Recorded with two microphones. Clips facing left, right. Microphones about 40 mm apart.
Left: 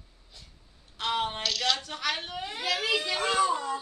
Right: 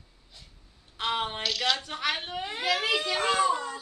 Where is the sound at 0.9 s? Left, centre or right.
Centre.